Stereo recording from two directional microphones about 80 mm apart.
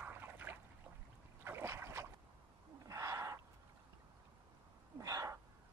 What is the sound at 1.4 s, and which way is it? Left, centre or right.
Boat, right.